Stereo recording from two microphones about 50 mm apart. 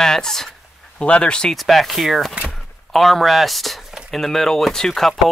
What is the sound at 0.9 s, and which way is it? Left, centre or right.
Speech, left.